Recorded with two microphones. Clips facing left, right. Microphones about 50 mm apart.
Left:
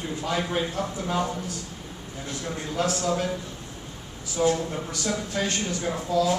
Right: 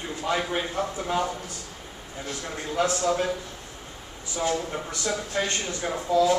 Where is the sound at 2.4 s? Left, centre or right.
Centre.